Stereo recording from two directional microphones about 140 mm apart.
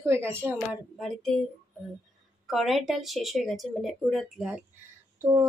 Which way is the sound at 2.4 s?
Centre (ahead or behind).